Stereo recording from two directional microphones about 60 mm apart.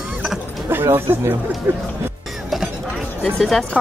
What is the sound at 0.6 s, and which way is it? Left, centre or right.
Speech, right.